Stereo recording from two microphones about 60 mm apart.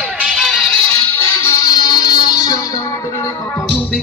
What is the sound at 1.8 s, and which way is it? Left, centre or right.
Music, left.